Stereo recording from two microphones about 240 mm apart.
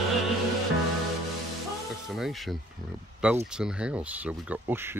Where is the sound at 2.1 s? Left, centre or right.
Centre.